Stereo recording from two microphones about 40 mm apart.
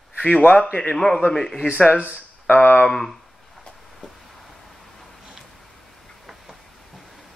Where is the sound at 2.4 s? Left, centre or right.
Left.